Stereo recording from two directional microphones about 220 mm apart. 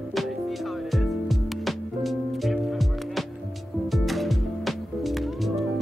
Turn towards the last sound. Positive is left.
turn(degrees=0)  # may be behind; listen again after turning